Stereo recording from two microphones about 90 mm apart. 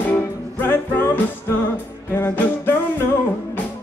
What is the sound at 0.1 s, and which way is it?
Music, 20° left (ahead or behind).